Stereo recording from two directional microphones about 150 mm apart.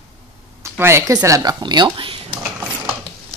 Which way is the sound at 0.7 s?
15° right (ahead or behind).